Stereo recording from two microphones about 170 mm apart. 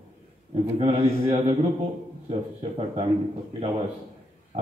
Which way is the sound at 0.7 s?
40° right (ahead or behind).